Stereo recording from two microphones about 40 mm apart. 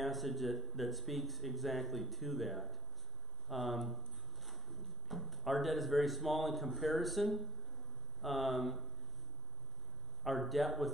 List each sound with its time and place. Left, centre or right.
0.0 s speech: centre
10.2 s speech: centre